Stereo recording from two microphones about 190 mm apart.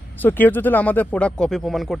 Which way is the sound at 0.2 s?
10° left (ahead or behind).